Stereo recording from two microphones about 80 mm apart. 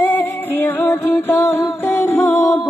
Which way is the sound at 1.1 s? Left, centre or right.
Left.